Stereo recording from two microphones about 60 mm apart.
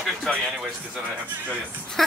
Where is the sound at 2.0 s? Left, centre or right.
Centre.